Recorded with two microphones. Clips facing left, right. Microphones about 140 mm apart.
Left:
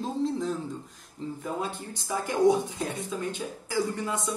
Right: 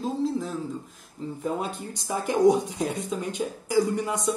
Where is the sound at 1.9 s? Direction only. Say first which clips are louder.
Right 5 dB; 20° right (ahead or behind).